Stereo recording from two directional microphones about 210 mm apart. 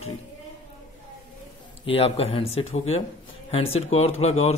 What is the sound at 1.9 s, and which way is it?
A man's voice, 25° left (ahead or behind).